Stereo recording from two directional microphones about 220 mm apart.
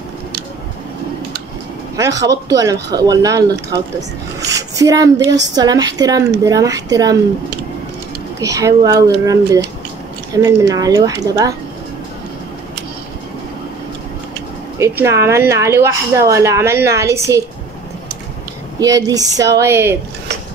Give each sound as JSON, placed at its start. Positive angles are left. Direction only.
{"t": 2.0, "sound": "a woman's voice", "side_deg": -15}
{"t": 8.4, "sound": "a woman's voice", "side_deg": -15}
{"t": 14.8, "sound": "a woman's voice", "side_deg": -15}
{"t": 18.8, "sound": "a woman's voice", "side_deg": -15}